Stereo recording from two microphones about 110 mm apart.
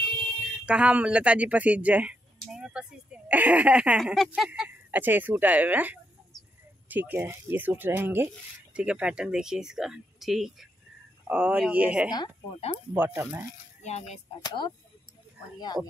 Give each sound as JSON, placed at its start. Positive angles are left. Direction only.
{"t": 0.7, "sound": "speech", "side_deg": -10}
{"t": 4.0, "sound": "speech", "side_deg": 0}
{"t": 4.5, "sound": "speech", "side_deg": -15}
{"t": 13.8, "sound": "music", "side_deg": 90}
{"t": 14.4, "sound": "speech", "side_deg": 40}